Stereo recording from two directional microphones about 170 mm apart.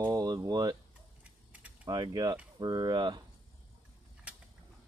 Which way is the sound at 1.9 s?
25° right (ahead or behind).